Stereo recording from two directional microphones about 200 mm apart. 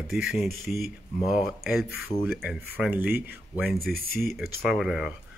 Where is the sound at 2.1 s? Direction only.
20° left (ahead or behind).